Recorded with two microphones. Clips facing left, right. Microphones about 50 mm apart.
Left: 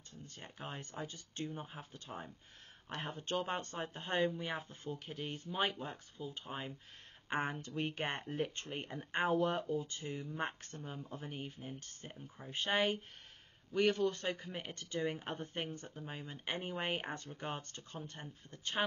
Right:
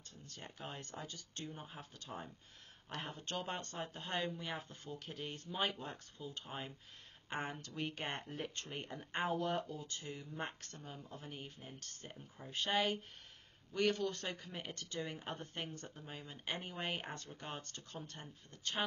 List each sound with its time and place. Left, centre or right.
0.3 s speech: left
1.4 s speech: centre
1.7 s speech: left
2.0 s speech: centre
2.9 s speech: left
5.0 s speech: centre
7.2 s speech: centre